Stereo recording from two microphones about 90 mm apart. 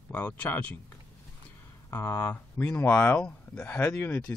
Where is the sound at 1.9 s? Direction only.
30° left (ahead or behind).